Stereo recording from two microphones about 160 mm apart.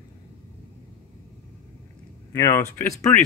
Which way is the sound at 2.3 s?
20° left (ahead or behind).